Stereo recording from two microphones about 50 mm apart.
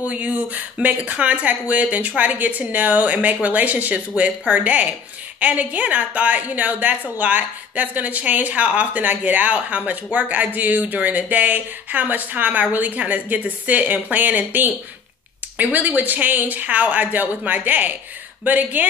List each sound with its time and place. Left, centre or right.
0.0 s speech: right